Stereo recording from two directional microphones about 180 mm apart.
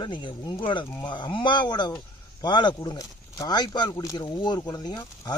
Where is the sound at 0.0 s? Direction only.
25° left (ahead or behind).